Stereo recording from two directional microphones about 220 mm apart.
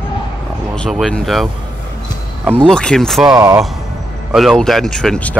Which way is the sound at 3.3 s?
15° right (ahead or behind).